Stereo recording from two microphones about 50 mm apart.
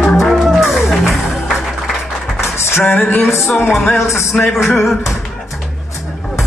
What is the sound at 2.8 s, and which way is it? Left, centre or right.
Female singing, left.